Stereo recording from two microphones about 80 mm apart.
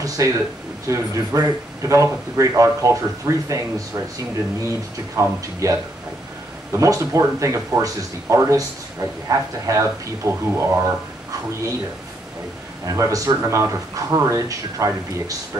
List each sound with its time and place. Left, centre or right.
0.2 s speech: right
12.8 s a man's voice: right